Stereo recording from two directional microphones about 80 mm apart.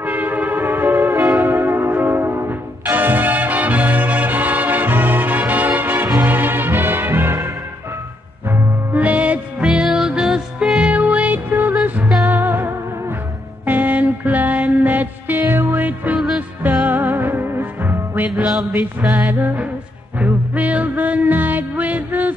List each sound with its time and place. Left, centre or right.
0.0 s music: right
18.5 s mantra: centre
18.9 s music: right